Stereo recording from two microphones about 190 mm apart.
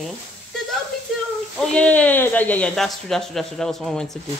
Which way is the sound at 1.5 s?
5° left (ahead or behind).